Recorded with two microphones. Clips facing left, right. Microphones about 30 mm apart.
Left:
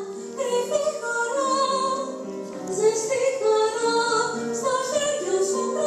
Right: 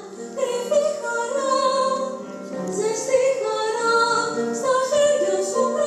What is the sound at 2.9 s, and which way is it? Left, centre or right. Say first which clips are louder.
Female singing: right 4 dB; centre.